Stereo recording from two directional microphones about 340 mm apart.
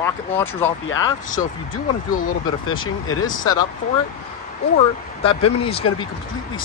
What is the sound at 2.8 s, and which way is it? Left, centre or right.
Speech, left.